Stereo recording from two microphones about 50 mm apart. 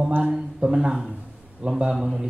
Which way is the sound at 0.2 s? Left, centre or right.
Centre.